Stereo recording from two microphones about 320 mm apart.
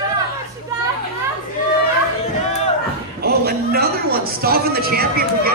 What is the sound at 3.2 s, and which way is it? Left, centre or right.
A man's voice, right.